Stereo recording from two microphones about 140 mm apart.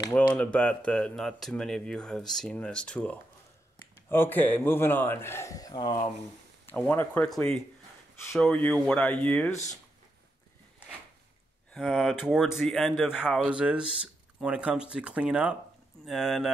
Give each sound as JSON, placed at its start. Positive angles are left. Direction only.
{"t": 0.1, "sound": "speech", "side_deg": 10}
{"t": 6.6, "sound": "speech", "side_deg": 10}
{"t": 11.7, "sound": "speech", "side_deg": 0}